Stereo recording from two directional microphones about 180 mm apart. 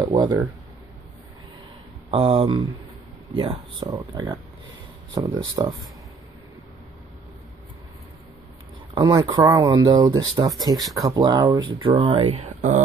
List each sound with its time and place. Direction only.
0.1 s speech: 25° right (ahead or behind)
2.0 s speech: 30° right (ahead or behind)
8.9 s speech: 25° right (ahead or behind)